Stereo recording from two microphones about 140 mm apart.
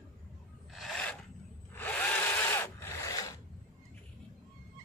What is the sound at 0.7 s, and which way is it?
Filing, 5° left (ahead or behind).